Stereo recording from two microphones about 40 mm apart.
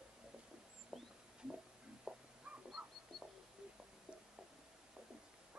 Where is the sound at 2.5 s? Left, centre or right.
Right.